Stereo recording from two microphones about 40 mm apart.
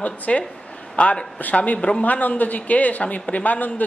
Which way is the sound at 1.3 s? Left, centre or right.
Left.